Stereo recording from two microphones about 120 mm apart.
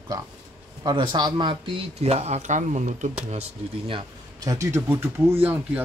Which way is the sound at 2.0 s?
65° right (ahead or behind).